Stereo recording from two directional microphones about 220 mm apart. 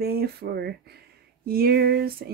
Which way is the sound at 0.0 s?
45° right (ahead or behind).